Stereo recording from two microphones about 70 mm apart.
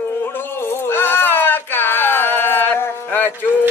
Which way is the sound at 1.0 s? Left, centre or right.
Left.